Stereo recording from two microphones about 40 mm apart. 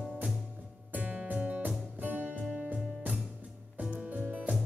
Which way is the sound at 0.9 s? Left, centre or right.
Right.